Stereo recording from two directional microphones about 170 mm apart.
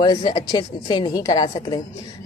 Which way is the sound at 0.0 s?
25° left (ahead or behind).